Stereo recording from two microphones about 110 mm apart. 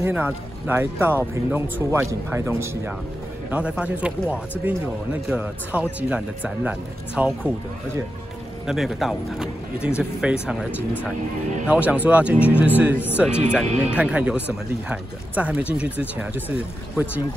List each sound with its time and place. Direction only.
0.1 s a man's voice: 15° right (ahead or behind)
3.4 s speech: 10° right (ahead or behind)
8.6 s speech: centre (ahead or behind)